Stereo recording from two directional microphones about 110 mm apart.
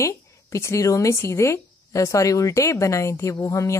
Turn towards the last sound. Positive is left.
turn(degrees=30)  # may be behind; listen again after turning